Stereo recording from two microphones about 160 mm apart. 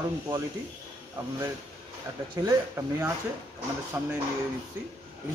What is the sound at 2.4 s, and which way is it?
Speech, 20° right (ahead or behind).